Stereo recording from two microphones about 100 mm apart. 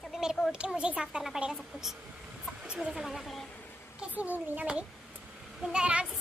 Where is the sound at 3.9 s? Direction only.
15° right (ahead or behind).